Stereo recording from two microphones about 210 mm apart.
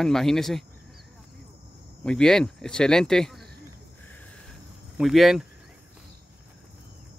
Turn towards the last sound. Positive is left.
turn(degrees=0)  # may be behind; listen again after turning